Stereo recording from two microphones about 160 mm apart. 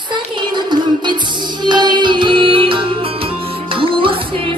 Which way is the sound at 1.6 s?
30° right (ahead or behind).